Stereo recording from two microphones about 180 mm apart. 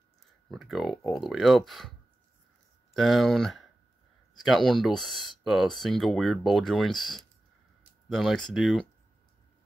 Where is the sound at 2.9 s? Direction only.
Centre (ahead or behind).